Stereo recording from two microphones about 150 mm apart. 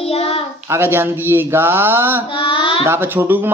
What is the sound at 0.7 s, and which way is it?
A man's voice, 15° right (ahead or behind).